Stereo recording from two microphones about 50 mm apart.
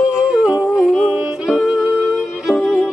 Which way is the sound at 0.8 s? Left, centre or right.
Centre.